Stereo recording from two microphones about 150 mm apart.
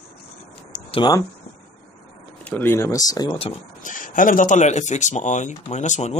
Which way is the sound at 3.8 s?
65° left (ahead or behind).